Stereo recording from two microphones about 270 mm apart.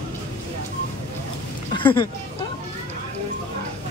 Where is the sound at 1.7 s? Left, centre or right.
Centre.